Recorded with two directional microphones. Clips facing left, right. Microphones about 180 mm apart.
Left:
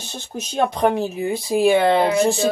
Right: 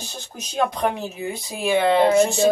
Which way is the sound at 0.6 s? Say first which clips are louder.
Left 4 dB; 30° left (ahead or behind).